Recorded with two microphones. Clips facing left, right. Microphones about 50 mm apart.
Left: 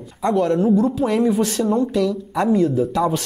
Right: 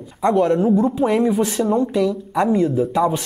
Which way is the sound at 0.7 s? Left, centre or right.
Centre.